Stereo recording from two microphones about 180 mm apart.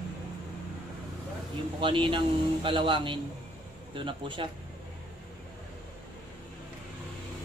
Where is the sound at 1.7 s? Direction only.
30° right (ahead or behind).